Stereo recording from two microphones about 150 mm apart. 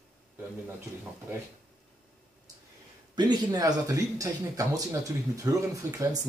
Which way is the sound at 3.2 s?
25° right (ahead or behind).